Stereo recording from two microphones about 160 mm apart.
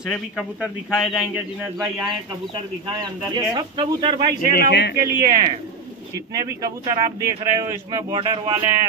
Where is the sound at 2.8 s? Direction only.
25° right (ahead or behind).